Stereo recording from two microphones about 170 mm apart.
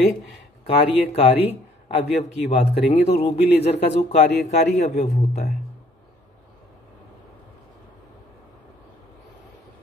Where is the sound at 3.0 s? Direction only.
35° left (ahead or behind).